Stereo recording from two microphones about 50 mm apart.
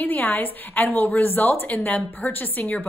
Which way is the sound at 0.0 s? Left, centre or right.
Left.